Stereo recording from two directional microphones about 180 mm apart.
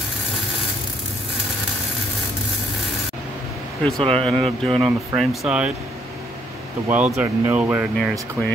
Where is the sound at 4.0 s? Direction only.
30° right (ahead or behind).